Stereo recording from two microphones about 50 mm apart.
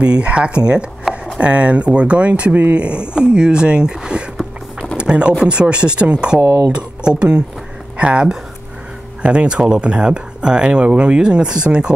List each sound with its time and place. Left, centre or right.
0.0 s speech: right
4.9 s a sound: right
5.4 s speech: centre